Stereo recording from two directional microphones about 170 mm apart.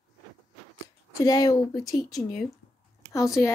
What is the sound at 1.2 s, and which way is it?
A woman's voice, 20° left (ahead or behind).